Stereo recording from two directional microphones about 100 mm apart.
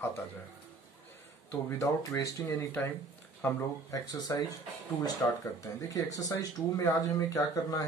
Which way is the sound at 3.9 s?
45° left (ahead or behind).